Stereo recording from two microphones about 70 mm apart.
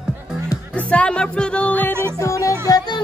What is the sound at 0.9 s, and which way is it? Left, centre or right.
Music, centre.